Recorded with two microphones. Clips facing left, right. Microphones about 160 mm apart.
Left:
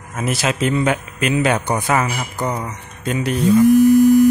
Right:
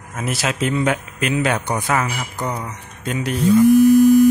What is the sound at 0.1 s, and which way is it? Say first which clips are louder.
Speech: left 3 dB; centre (ahead or behind).